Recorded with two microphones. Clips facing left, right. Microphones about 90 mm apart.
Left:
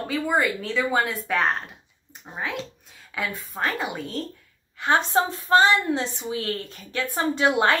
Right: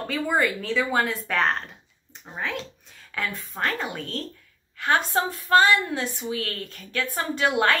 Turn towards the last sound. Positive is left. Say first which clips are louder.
# left 2 dB
turn(degrees=25)  # may be behind; listen again after turning